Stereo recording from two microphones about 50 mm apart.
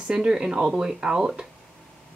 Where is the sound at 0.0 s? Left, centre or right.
Centre.